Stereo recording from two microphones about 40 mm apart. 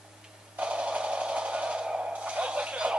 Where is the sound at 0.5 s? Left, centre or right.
Right.